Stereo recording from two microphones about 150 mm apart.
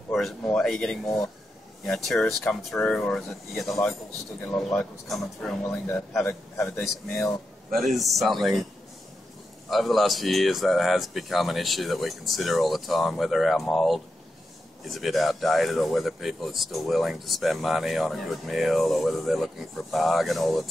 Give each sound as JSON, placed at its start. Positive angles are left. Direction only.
{"t": 0.1, "sound": "speech", "side_deg": 0}
{"t": 7.7, "sound": "speech", "side_deg": 0}
{"t": 9.7, "sound": "speech", "side_deg": 0}